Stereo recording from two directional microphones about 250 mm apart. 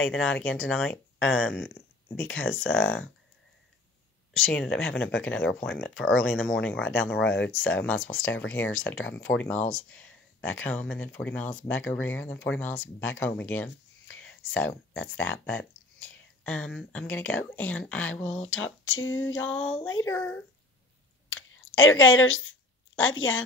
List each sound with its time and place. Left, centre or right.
0.1 s speech: centre
4.3 s speech: centre
18.5 s speech: left
19.6 s speech: centre
21.3 s a sound: left